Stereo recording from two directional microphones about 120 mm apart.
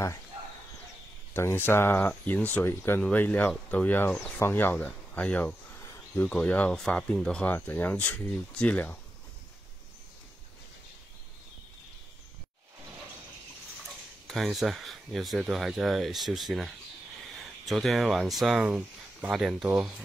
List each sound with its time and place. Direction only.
1.3 s speech: 20° left (ahead or behind)
5.8 s a sound: 25° left (ahead or behind)
6.2 s speech: 10° left (ahead or behind)
13.8 s speech: centre (ahead or behind)